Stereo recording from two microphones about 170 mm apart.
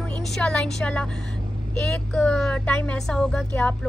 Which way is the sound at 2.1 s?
5° left (ahead or behind).